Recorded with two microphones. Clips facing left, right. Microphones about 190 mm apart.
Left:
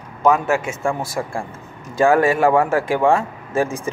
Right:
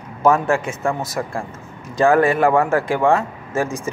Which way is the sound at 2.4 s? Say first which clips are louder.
Even; 10° left (ahead or behind).